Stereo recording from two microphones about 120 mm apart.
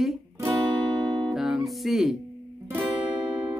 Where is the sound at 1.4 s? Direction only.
5° right (ahead or behind).